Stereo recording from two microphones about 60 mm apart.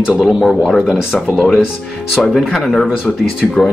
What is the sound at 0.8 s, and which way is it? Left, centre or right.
Speech, centre.